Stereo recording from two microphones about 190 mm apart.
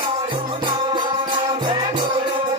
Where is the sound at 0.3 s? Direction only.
25° right (ahead or behind).